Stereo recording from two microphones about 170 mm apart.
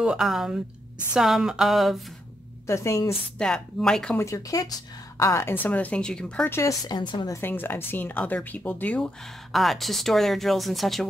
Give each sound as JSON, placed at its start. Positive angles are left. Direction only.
{"t": 0.0, "sound": "speech", "side_deg": -5}
{"t": 2.6, "sound": "a woman's voice", "side_deg": 15}
{"t": 3.3, "sound": "speech", "side_deg": 5}
{"t": 4.2, "sound": "a woman's voice", "side_deg": 20}
{"t": 7.3, "sound": "speech", "side_deg": 15}